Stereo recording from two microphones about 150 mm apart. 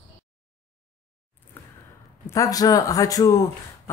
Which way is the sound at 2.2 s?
20° left (ahead or behind).